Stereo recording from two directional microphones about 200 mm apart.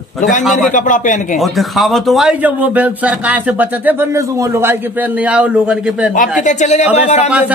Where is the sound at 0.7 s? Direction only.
40° left (ahead or behind).